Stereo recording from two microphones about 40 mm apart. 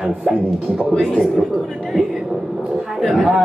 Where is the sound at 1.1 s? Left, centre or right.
Centre.